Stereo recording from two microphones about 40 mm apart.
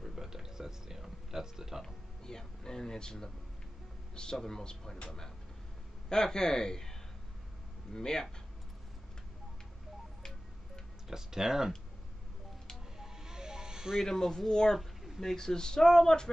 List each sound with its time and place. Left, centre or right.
0.0 s a sound: centre
2.2 s a sound: centre
4.1 s speech: centre
6.0 s a man's voice: centre
11.1 s speech: centre
13.0 s music: centre
14.0 s speech: centre
14.8 s speech: centre